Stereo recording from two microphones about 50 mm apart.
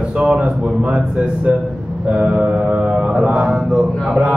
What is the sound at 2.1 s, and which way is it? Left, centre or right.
Mantra, right.